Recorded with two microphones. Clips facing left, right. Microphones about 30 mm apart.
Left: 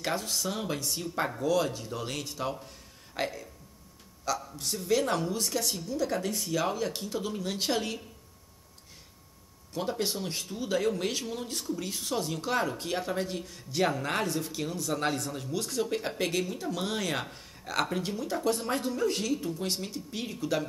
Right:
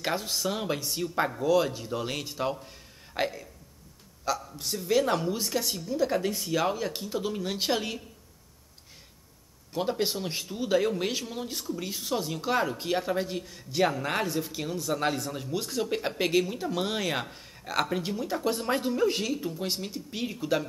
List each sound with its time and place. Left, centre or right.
0.0 s speech: centre
4.6 s speech: centre
9.8 s speech: centre